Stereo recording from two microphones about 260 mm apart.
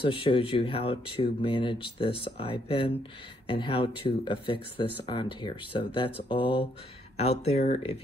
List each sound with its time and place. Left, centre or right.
0.0 s speech: centre